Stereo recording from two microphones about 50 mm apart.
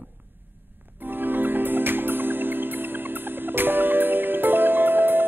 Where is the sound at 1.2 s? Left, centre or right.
Right.